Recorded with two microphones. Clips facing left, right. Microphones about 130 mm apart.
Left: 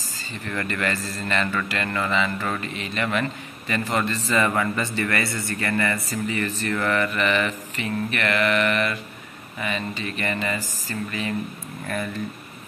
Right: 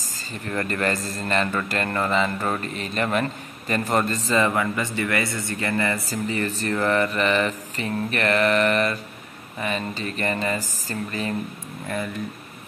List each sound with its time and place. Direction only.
0.3 s mantra: 35° right (ahead or behind)
4.5 s a man's voice: 15° right (ahead or behind)
6.0 s mantra: 30° right (ahead or behind)